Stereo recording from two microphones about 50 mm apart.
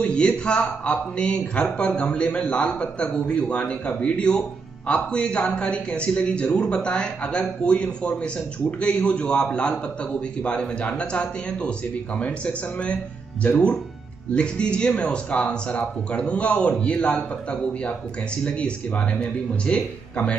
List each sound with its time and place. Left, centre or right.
0.0 s speech: centre